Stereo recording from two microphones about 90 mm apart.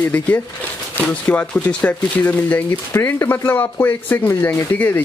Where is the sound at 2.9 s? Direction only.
30° left (ahead or behind).